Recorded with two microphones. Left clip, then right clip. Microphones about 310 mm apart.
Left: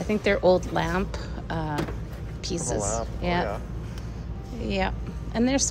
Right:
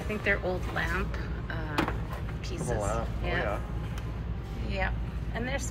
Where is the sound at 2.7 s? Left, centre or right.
Left.